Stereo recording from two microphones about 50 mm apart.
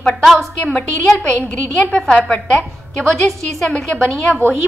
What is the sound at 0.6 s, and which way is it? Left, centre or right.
Speech, left.